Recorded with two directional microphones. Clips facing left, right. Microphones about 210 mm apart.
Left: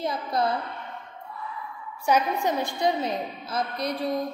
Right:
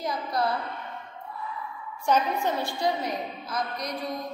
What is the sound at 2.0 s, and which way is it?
A woman's voice, 15° left (ahead or behind).